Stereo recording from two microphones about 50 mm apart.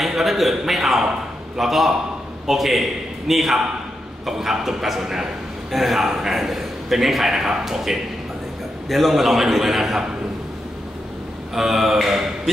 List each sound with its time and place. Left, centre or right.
0.0 s a man's voice: centre
11.5 s a man's voice: centre